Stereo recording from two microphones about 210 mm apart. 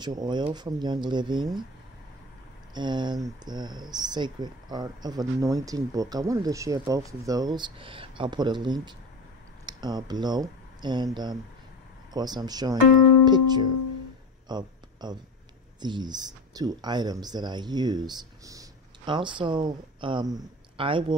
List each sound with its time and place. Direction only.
0.0 s speech: 20° right (ahead or behind)
2.7 s speech: 20° right (ahead or behind)
14.5 s a sound: 20° right (ahead or behind)
15.8 s speech: 20° right (ahead or behind)